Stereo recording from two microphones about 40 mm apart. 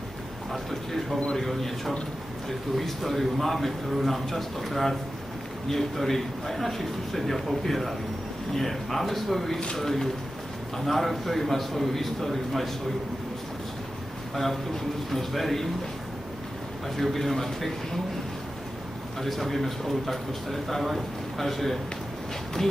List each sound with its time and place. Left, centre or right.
1.4 s a man's voice: centre
14.3 s a man's voice: centre
16.9 s a man's voice: centre
19.2 s a man's voice: centre